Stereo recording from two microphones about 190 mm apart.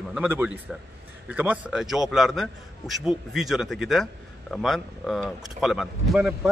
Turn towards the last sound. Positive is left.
turn(degrees=0)  # may be behind; listen again after turning